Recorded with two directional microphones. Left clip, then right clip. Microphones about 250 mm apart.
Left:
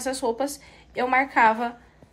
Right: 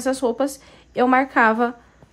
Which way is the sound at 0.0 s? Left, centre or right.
Right.